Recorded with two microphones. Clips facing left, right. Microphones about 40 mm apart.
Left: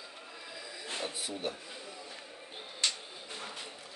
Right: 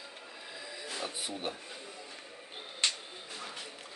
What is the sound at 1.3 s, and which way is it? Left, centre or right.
Speech, right.